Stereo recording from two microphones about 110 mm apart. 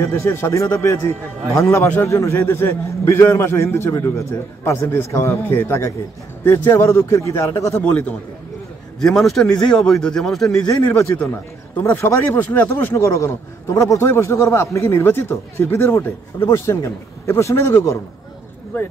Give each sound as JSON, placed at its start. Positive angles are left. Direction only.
{"t": 0.0, "sound": "a man's voice", "side_deg": 25}
{"t": 7.7, "sound": "a man's voice", "side_deg": 15}
{"t": 9.0, "sound": "a man's voice", "side_deg": 5}
{"t": 11.9, "sound": "a man's voice", "side_deg": 25}